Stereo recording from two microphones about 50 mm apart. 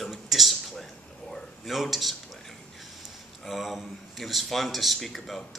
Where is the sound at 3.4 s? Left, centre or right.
Centre.